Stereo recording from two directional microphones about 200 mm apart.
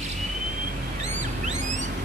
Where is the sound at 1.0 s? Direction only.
35° right (ahead or behind).